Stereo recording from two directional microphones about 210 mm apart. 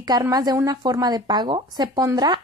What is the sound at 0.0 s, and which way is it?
A woman's voice, 20° right (ahead or behind).